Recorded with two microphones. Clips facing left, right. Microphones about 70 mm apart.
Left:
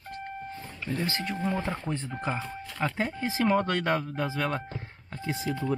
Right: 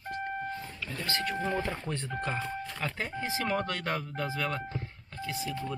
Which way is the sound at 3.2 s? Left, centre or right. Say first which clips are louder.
Left 6 dB; left.